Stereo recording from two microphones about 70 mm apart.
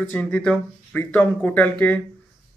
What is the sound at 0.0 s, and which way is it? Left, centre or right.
Speech, left.